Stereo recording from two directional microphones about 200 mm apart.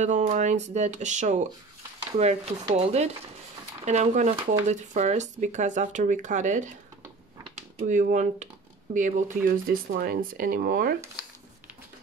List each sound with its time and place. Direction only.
0.0 s speech: 35° right (ahead or behind)